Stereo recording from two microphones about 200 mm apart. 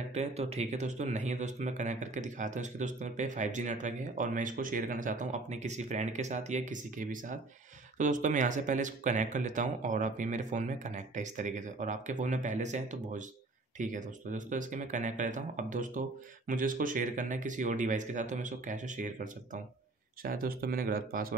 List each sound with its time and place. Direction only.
0.1 s speech: 35° right (ahead or behind)